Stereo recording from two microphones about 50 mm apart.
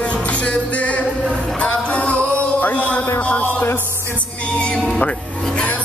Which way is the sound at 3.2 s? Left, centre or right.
Left.